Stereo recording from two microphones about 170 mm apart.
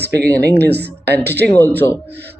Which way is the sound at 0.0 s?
75° right (ahead or behind).